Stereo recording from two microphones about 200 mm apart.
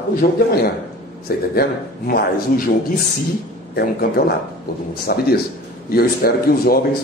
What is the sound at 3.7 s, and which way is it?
A man's voice, 50° left (ahead or behind).